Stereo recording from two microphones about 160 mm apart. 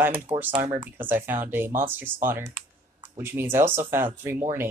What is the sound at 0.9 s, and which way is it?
Speech, 15° right (ahead or behind).